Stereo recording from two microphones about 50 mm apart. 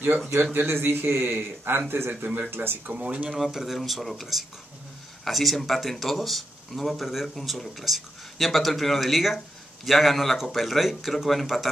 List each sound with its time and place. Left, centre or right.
0.4 s speech: right
0.7 s speech: right
2.9 s speech: right
3.3 s speech: centre